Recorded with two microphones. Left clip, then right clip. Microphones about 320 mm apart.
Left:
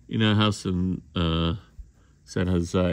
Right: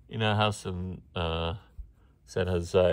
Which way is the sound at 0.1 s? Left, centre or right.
Centre.